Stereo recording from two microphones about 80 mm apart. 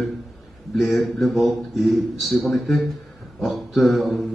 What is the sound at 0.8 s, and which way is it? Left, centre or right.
A man's voice, centre.